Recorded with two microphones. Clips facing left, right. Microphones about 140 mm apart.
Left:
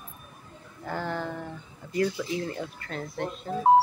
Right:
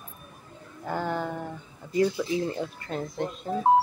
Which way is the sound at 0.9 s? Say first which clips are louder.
Right 2 dB; 15° right (ahead or behind).